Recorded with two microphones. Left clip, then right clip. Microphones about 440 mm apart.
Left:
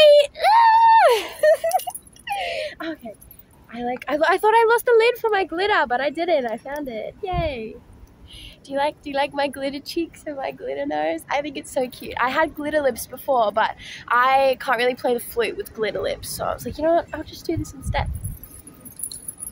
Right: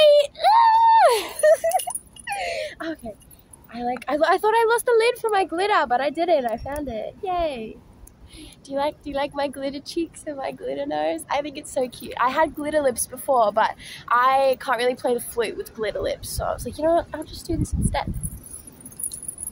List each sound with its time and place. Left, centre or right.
0.0 s screaming: left
4.0 s speech: left